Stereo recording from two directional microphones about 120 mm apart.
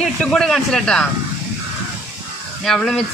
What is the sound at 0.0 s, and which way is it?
Speech, 5° left (ahead or behind).